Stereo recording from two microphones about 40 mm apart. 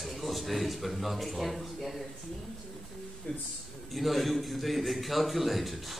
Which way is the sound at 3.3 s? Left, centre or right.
Left.